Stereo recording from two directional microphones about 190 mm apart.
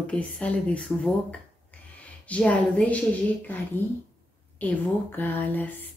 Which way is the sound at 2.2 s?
5° left (ahead or behind).